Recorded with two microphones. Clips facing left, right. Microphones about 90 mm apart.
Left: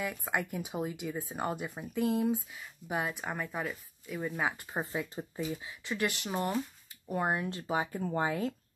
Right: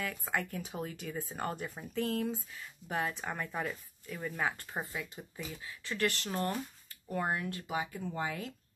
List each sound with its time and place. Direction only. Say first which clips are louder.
0.0 s speech: left 2 dB; 15° left (ahead or behind)
4.9 s speech: left 6 dB; 30° left (ahead or behind)
5.5 s speech: left 4 dB; 20° left (ahead or behind); by 8.5 s 35° left (ahead or behind)